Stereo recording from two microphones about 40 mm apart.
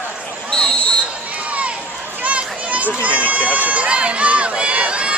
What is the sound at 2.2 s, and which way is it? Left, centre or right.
Crowd, right.